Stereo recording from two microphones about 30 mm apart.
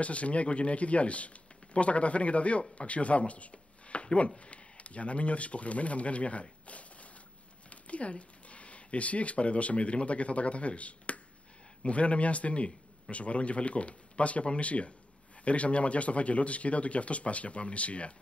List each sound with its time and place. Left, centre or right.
0.0 s speech: left
6.7 s a sound: left
7.7 s speech: left